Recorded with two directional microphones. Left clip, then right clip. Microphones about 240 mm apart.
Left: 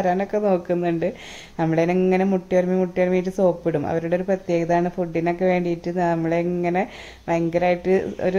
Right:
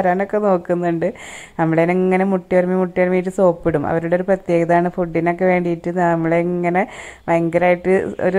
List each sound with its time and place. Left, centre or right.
0.0 s speech: centre